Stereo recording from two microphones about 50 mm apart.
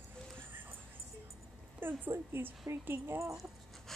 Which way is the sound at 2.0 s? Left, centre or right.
Right.